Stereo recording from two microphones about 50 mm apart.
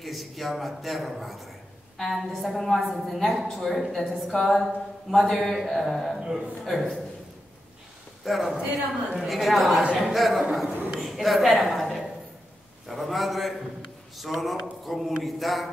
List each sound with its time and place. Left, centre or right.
0.0 s speech: centre
6.1 s a man's voice: centre
6.6 s speech: centre
8.2 s a man's voice: centre
8.5 s speech: right
9.2 s a woman's voice: centre